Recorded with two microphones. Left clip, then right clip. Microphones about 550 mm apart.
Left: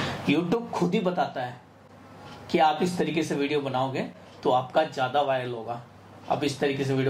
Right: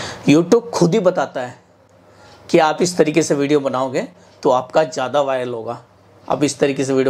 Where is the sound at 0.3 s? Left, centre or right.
Right.